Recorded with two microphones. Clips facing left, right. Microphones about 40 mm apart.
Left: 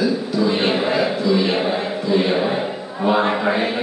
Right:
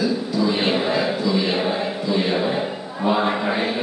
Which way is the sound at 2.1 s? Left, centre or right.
Centre.